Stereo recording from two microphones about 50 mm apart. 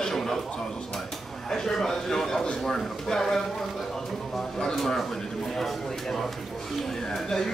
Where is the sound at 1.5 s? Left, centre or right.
Centre.